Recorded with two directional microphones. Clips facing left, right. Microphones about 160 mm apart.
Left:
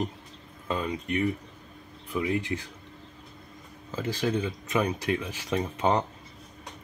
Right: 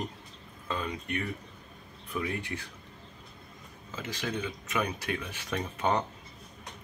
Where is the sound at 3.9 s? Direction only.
35° left (ahead or behind).